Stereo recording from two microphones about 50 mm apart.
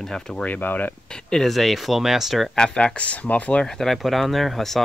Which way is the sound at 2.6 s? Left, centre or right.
Left.